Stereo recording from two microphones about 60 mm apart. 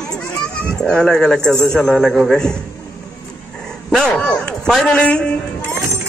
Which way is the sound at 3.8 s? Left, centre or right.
Centre.